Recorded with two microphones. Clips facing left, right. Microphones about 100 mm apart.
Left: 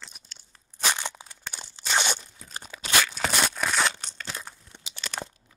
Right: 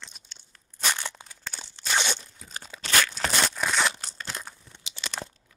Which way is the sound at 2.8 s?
5° left (ahead or behind).